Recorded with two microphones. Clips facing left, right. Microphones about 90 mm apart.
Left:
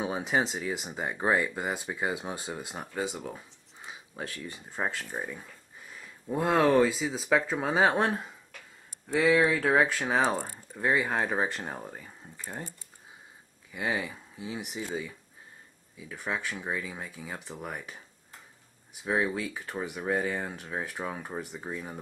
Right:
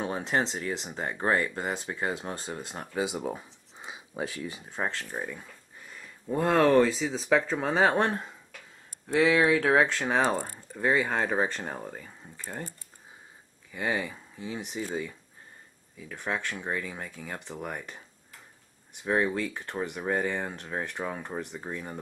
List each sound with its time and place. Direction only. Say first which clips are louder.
0.0 s speech: even; 5° left (ahead or behind)
2.9 s speech: right 4 dB; 10° right (ahead or behind)
3.3 s a sound: right 6 dB; 20° right (ahead or behind)
4.2 s speech: right 5 dB; 15° right (ahead or behind)
4.5 s speech: right 1 dB; centre (ahead or behind)
13.7 s speech: right 1 dB; 5° left (ahead or behind)